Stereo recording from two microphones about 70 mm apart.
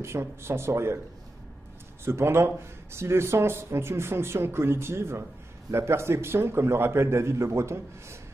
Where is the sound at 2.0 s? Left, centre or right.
Right.